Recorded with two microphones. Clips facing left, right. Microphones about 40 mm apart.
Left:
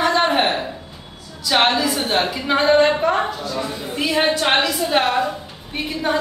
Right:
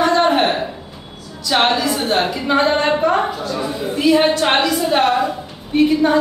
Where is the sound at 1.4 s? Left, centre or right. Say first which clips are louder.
Right 1 dB; centre.